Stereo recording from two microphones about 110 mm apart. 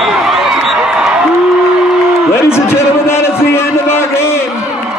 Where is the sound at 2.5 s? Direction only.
20° left (ahead or behind).